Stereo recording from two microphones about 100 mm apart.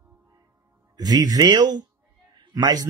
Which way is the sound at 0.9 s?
40° right (ahead or behind).